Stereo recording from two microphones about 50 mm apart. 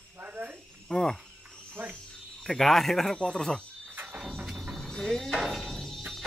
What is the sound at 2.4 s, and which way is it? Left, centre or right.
A man's voice, centre.